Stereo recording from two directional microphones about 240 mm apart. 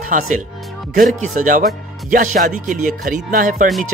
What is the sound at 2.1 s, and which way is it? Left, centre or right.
Music, right.